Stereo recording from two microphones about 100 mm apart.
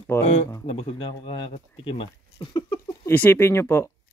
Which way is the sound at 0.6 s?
80° left.